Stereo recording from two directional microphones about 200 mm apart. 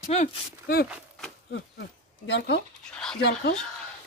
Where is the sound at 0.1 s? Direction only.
30° left (ahead or behind).